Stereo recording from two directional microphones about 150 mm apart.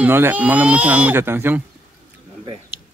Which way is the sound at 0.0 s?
15° right (ahead or behind).